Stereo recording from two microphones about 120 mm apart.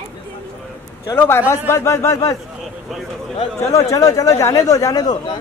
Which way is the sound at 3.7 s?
25° left (ahead or behind).